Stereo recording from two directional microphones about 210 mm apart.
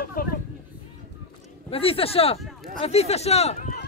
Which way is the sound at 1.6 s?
25° left (ahead or behind).